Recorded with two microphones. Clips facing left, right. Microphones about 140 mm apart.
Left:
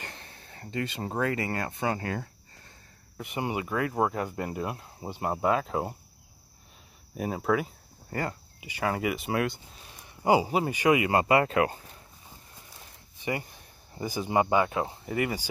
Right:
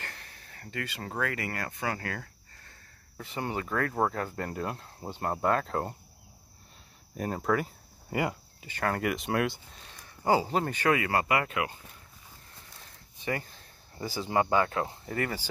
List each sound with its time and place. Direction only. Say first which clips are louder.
0.0 s speech: left 2 dB; 25° left (ahead or behind); by 5.9 s 5° left (ahead or behind)
7.2 s speech: left 1 dB; 5° left (ahead or behind)
8.1 s speech: right 2 dB; 10° right (ahead or behind)
8.5 s speech: left 2 dB; 10° left (ahead or behind)
9.9 s speech: left 3 dB; 15° left (ahead or behind); by 11.8 s 40° left (ahead or behind)
12.5 s a sound: left 2 dB; 15° left (ahead or behind)